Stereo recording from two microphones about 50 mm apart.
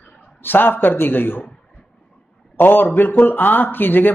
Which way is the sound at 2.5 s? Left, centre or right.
Left.